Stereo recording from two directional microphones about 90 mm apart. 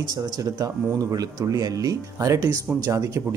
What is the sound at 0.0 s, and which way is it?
A man's voice, 45° right (ahead or behind).